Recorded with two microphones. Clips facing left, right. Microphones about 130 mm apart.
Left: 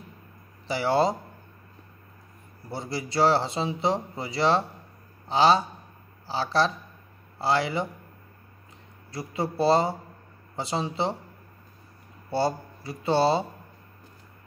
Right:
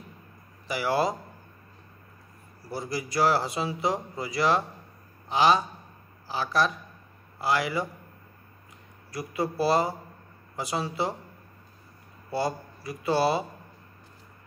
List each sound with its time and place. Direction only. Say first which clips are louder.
0.7 s speech: left 3 dB; 30° left (ahead or behind)
2.7 s speech: even; 25° left (ahead or behind)
9.1 s speech: even; 25° left (ahead or behind)
12.3 s speech: left 3 dB; 30° left (ahead or behind)